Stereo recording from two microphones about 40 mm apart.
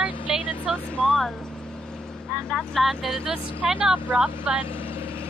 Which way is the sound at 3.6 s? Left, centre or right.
Right.